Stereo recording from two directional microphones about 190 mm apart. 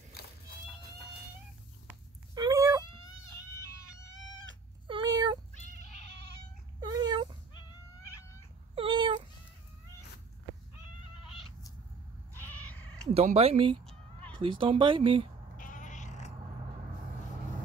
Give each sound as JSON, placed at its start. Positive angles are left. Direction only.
{"t": 0.1, "sound": "cat", "side_deg": 55}
{"t": 2.3, "sound": "cat", "side_deg": -20}
{"t": 4.8, "sound": "cat", "side_deg": -25}
{"t": 6.8, "sound": "dog", "side_deg": -20}
{"t": 8.7, "sound": "cat", "side_deg": -25}
{"t": 12.7, "sound": "sheep", "side_deg": 10}
{"t": 13.1, "sound": "speech", "side_deg": -30}
{"t": 15.5, "sound": "cat", "side_deg": 45}